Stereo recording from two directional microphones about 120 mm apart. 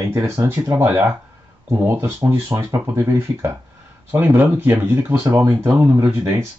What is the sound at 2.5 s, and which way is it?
Speech, 30° right (ahead or behind).